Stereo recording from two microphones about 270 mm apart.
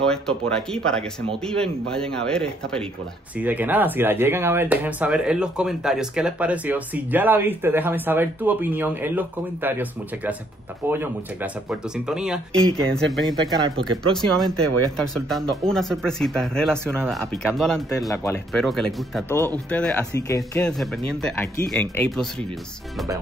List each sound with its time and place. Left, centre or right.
0.0 s speech: centre
13.8 s speech: centre
15.0 s speech: centre